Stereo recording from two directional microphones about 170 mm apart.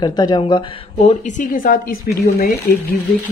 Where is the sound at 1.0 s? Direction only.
45° left (ahead or behind).